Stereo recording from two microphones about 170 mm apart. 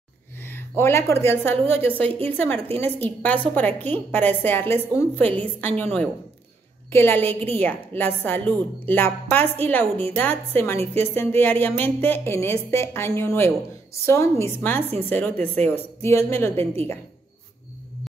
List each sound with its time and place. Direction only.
0.4 s a woman's voice: 15° left (ahead or behind)
6.9 s a woman's voice: 15° left (ahead or behind)
16.5 s a woman's voice: 35° right (ahead or behind)